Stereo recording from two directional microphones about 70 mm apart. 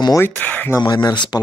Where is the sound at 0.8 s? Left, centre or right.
Left.